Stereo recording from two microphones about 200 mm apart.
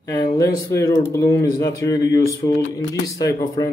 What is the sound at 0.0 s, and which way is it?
Speech, 20° left (ahead or behind).